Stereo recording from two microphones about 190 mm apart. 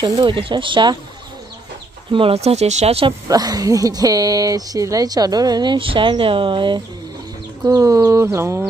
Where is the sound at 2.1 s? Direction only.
30° right (ahead or behind).